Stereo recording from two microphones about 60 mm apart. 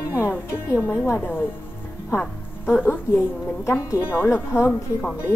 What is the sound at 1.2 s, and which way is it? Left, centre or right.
Speech, left.